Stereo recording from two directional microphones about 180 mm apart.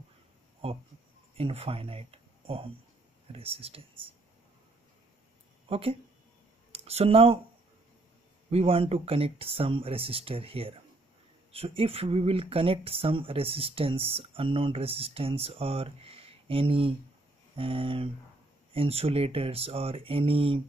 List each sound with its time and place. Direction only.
0.6 s speech: 30° right (ahead or behind)
5.7 s speech: 30° right (ahead or behind)
8.5 s speech: 35° right (ahead or behind)